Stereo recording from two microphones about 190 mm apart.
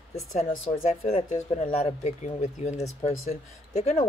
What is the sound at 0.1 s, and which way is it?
Speech, 35° left (ahead or behind).